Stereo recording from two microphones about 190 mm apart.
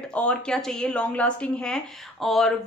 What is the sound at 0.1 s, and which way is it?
A woman's voice, 5° left (ahead or behind).